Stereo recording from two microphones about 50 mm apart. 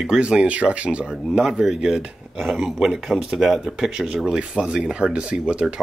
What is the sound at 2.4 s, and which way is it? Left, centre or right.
Speech, centre.